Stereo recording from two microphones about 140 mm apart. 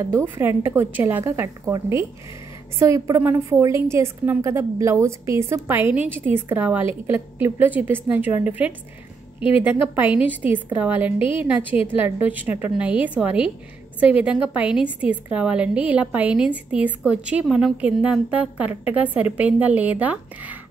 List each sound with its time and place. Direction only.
0.0 s a woman's voice: 15° right (ahead or behind)
11.1 s a woman's voice: 40° left (ahead or behind)
11.4 s a woman's voice: 10° right (ahead or behind)